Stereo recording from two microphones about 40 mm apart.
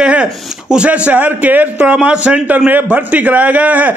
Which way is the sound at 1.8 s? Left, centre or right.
Right.